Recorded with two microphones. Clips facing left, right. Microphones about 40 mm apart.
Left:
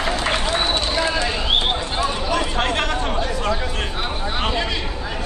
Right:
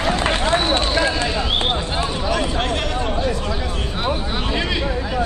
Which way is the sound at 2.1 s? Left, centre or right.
Centre.